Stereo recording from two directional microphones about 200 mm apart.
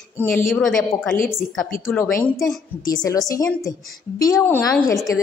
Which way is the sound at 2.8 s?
20° left (ahead or behind).